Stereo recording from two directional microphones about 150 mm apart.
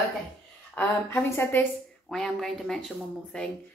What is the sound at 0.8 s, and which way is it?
Speech, 15° left (ahead or behind).